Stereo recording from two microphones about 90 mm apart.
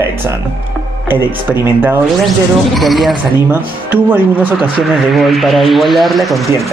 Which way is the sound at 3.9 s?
20° right (ahead or behind).